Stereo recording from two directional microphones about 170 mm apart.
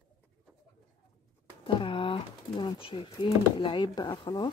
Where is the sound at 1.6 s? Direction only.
30° left (ahead or behind).